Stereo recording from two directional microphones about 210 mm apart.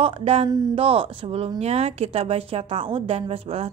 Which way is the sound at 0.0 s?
30° right (ahead or behind).